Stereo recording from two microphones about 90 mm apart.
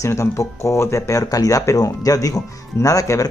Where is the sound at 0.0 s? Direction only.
35° left (ahead or behind).